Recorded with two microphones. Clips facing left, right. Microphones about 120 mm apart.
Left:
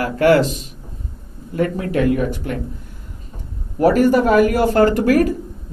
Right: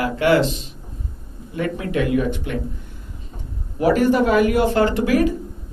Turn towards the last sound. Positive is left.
turn(degrees=45)  # may be behind; listen again after turning